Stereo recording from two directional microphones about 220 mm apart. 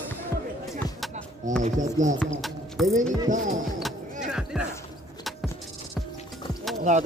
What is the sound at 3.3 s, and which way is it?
Speech, 35° right (ahead or behind).